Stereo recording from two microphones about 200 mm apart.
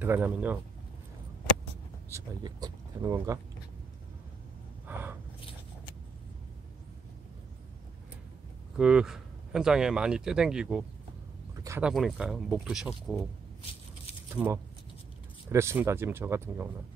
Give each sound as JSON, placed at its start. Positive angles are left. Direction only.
{"t": 0.0, "sound": "speech", "side_deg": -10}
{"t": 2.0, "sound": "speech", "side_deg": -15}
{"t": 4.8, "sound": "gasp", "side_deg": -10}
{"t": 8.7, "sound": "speech", "side_deg": -5}
{"t": 14.3, "sound": "speech", "side_deg": -10}